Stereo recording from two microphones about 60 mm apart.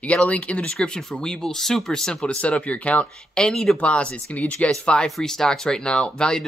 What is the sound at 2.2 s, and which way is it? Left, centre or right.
Speech, centre.